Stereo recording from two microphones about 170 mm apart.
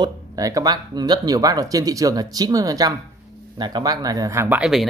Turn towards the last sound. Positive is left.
turn(degrees=0)  # may be behind; listen again after turning